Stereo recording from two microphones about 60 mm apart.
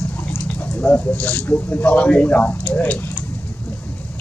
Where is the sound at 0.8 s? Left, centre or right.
Left.